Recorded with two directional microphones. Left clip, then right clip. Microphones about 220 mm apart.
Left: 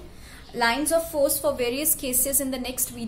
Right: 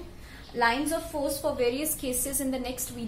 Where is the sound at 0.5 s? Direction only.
50° left (ahead or behind).